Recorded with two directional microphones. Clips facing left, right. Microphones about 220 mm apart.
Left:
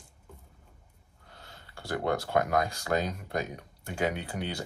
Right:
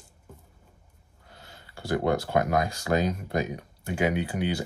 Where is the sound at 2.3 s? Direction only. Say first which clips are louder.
Right 2 dB; 20° right (ahead or behind).